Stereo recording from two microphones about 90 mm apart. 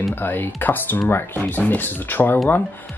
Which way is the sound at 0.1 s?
25° left (ahead or behind).